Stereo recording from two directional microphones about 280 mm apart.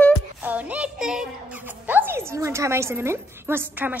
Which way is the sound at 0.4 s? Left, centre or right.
Centre.